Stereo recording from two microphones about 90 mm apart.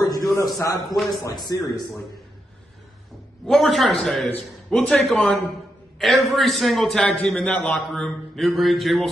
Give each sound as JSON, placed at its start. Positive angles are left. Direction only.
{"t": 0.0, "sound": "a sound", "side_deg": 40}
{"t": 0.3, "sound": "a man's voice", "side_deg": 35}
{"t": 3.4, "sound": "a man's voice", "side_deg": 0}
{"t": 7.2, "sound": "a man's voice", "side_deg": 15}
{"t": 7.9, "sound": "a man's voice", "side_deg": 5}